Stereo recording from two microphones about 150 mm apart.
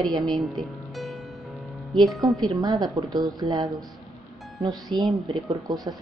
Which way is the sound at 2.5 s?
25° right (ahead or behind).